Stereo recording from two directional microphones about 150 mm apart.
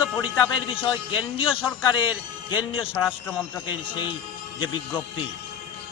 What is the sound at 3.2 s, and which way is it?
Speech, 15° left (ahead or behind).